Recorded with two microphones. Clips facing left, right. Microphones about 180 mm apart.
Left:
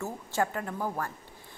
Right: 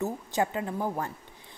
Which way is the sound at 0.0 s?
20° right (ahead or behind).